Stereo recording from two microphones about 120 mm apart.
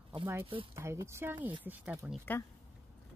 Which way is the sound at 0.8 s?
25° right (ahead or behind).